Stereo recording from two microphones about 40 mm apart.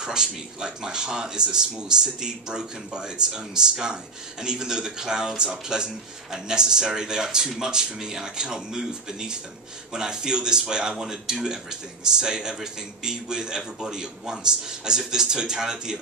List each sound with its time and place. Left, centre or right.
0.0 s speech: centre